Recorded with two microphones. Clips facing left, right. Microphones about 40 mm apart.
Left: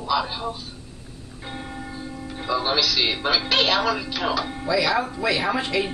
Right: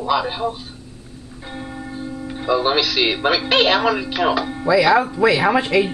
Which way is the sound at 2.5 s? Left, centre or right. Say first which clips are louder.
Right 4 dB; right.